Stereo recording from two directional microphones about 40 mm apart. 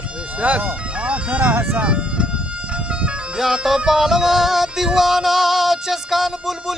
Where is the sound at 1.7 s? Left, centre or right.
Right.